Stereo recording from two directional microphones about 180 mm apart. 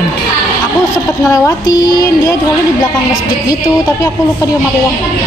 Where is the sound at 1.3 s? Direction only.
20° left (ahead or behind).